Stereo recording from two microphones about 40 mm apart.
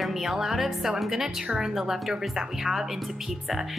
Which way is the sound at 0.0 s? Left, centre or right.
Centre.